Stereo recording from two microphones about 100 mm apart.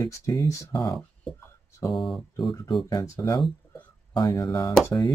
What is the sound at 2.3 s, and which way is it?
Speech, 40° left (ahead or behind).